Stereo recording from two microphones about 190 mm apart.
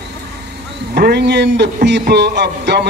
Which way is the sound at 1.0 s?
60° right (ahead or behind).